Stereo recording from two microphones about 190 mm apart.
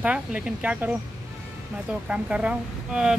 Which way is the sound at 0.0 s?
5° right (ahead or behind).